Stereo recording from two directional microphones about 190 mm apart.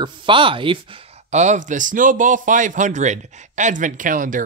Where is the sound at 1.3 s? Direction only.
40° right (ahead or behind).